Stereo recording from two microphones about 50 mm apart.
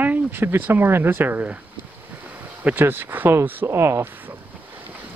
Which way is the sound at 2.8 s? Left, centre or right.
Right.